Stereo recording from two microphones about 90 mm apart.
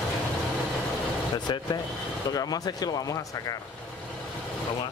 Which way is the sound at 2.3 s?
45° left (ahead or behind).